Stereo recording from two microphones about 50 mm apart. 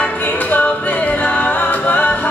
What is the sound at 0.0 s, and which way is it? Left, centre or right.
Music, left.